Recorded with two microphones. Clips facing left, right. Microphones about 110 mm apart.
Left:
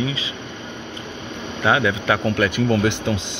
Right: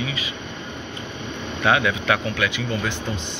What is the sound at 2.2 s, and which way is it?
Speech, 45° left (ahead or behind).